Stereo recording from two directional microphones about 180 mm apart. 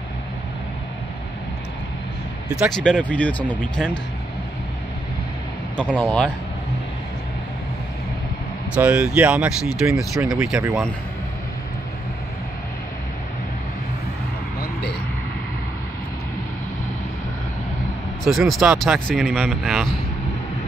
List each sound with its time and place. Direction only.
2.5 s speech: centre (ahead or behind)
5.8 s speech: 5° left (ahead or behind)
8.7 s speech: 5° right (ahead or behind)
10.6 s speech: 15° right (ahead or behind)
14.6 s a sound: 65° left (ahead or behind)
18.2 s speech: centre (ahead or behind)